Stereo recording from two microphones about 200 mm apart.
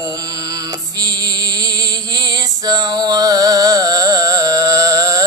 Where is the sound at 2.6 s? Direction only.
20° right (ahead or behind).